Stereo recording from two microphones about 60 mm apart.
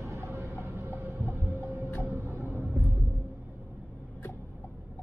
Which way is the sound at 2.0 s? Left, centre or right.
Right.